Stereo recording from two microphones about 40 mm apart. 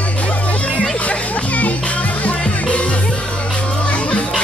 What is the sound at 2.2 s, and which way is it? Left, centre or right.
Music, left.